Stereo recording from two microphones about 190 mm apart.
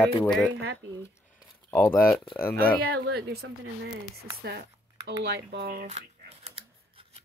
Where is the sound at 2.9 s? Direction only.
60° right (ahead or behind).